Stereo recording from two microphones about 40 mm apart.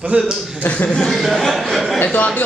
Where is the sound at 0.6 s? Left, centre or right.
Left.